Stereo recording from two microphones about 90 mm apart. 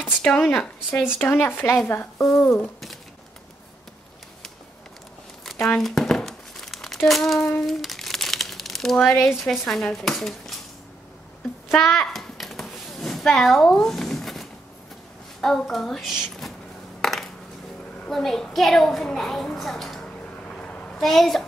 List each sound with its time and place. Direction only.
0.2 s speech: 5° left (ahead or behind)
1.1 s speech: 25° left (ahead or behind)
2.6 s speech: centre (ahead or behind)
5.4 s crumpling: 5° left (ahead or behind)
7.1 s speech: centre (ahead or behind)
7.6 s crumpling: centre (ahead or behind)
9.2 s speech: centre (ahead or behind)
11.7 s a sound: centre (ahead or behind)
15.4 s speech: 5° left (ahead or behind)
17.0 s a sound: centre (ahead or behind)
18.1 s a child's voice: 5° left (ahead or behind)
21.0 s speech: centre (ahead or behind)